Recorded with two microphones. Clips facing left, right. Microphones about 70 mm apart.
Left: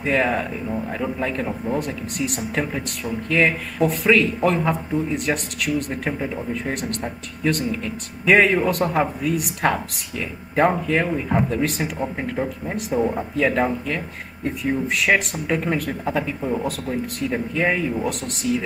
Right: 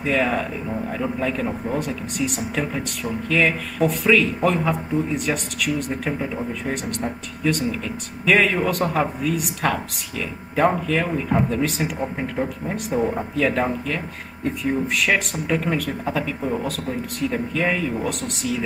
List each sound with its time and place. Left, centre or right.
0.0 s speech: centre
0.7 s speech: centre
1.2 s speech: centre
1.7 s speech: centre
7.7 s speech: centre
15.4 s speech: centre
17.3 s speech: centre
17.9 s speech: centre